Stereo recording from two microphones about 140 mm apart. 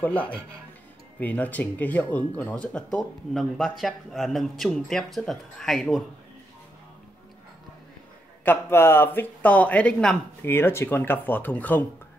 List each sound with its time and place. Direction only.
0.0 s speech: 10° left (ahead or behind)
8.5 s speech: 15° left (ahead or behind)
10.4 s speech: 15° left (ahead or behind)